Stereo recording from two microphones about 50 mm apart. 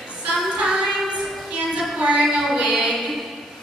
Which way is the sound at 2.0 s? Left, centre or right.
Centre.